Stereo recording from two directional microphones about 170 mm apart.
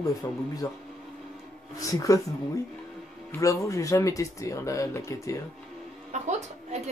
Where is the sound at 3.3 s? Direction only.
20° left (ahead or behind).